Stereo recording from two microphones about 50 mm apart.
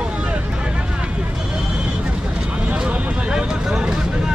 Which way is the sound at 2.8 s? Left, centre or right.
Centre.